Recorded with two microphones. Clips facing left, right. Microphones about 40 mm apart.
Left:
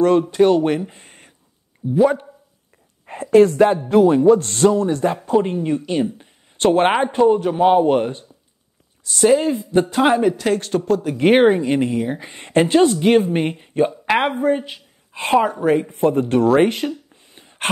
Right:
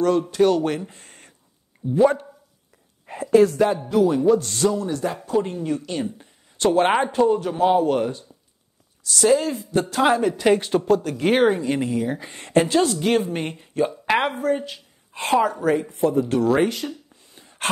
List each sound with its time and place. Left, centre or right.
0.2 s a woman's voice: centre
0.7 s a sound: centre
1.9 s speech: centre
3.1 s speech: left; by 6.2 s centre
6.6 s a woman's voice: left; by 10.3 s centre
10.3 s speech: centre
10.9 s speech: centre
11.1 s a woman's voice: left
15.9 s speech: left
17.1 s a sound: left